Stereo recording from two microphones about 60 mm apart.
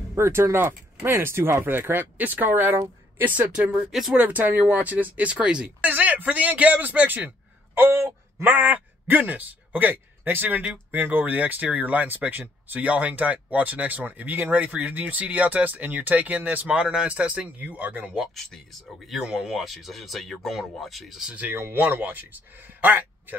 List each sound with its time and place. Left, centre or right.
0.1 s speech: right
8.5 s speech: right
19.2 s speech: centre
21.2 s speech: centre
21.5 s speech: right
21.8 s a man's voice: right